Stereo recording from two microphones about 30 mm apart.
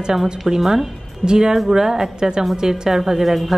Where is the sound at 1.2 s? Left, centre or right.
Right.